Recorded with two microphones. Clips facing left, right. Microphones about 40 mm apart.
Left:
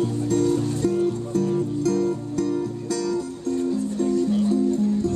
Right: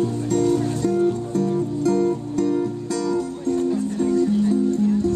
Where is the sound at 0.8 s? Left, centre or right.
Centre.